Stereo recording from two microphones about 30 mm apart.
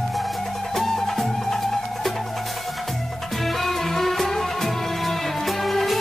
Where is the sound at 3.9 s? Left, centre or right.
Centre.